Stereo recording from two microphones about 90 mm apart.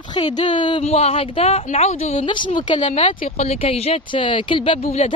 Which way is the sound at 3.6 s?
90° left.